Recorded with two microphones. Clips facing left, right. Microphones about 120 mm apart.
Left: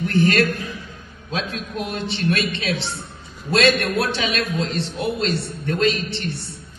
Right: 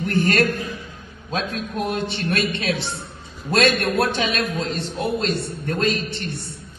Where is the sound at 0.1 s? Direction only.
50° right (ahead or behind).